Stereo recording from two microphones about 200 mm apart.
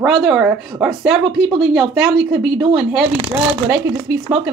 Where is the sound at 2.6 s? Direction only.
25° right (ahead or behind).